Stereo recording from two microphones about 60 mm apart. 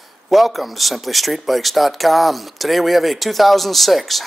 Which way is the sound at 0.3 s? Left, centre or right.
Centre.